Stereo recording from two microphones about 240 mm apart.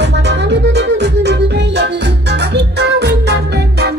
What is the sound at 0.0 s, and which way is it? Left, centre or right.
Music, right.